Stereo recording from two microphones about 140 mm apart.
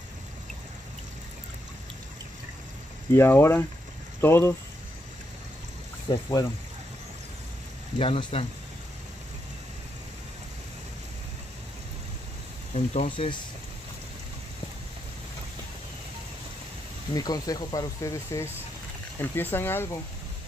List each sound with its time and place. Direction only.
3.1 s speech: 15° left (ahead or behind)
6.1 s speech: 35° left (ahead or behind)
8.0 s speech: 40° left (ahead or behind)
12.7 s speech: 55° left (ahead or behind)
13.1 s speech: 35° left (ahead or behind)
17.1 s speech: 25° left (ahead or behind)